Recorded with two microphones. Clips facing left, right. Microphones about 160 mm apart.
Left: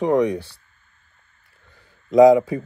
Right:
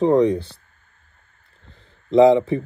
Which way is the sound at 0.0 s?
30° right (ahead or behind).